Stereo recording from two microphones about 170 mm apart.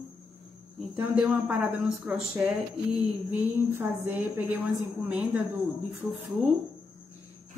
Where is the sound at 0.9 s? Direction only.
5° right (ahead or behind).